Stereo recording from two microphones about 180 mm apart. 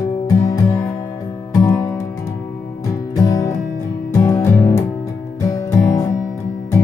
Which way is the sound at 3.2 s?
20° left (ahead or behind).